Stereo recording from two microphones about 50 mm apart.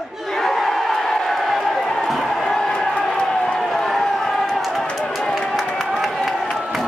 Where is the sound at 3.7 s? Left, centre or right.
Centre.